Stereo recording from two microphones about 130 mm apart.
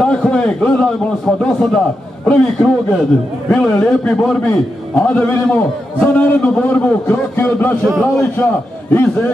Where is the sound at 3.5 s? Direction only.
10° left (ahead or behind).